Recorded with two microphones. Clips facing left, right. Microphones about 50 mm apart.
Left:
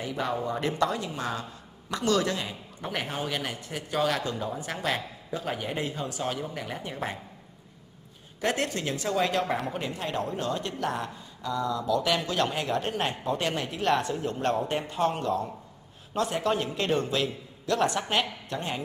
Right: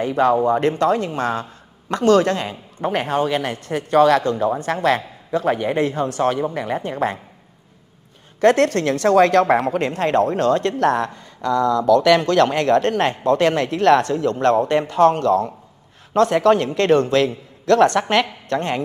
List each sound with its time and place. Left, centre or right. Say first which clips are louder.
0.0 s speech: right 13 dB; right
8.4 s speech: right 13 dB; right